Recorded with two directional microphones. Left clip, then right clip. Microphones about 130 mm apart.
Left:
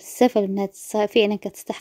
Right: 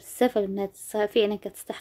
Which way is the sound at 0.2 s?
45° left (ahead or behind).